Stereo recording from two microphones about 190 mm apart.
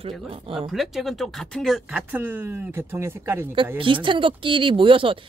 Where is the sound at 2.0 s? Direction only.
10° right (ahead or behind).